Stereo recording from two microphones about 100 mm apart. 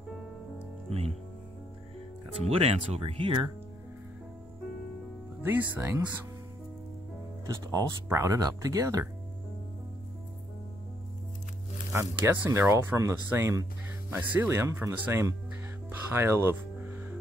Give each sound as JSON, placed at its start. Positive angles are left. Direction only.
{"t": 0.8, "sound": "speech", "side_deg": -90}
{"t": 2.3, "sound": "speech", "side_deg": -90}
{"t": 5.4, "sound": "speech", "side_deg": -20}
{"t": 7.4, "sound": "speech", "side_deg": -40}
{"t": 11.9, "sound": "speech", "side_deg": -30}
{"t": 14.1, "sound": "speech", "side_deg": -15}